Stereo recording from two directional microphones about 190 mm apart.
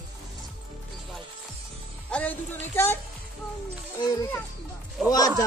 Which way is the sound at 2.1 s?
10° left (ahead or behind).